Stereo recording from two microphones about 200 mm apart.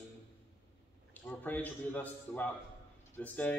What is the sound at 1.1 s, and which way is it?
A man's voice, 10° left (ahead or behind).